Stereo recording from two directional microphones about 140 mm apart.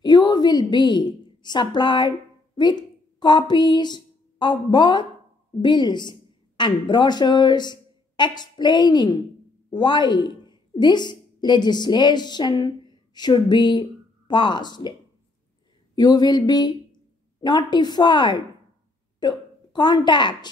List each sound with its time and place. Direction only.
0.0 s a woman's voice: 30° left (ahead or behind)
15.9 s a sound: 30° left (ahead or behind)
17.4 s a woman's voice: 30° left (ahead or behind)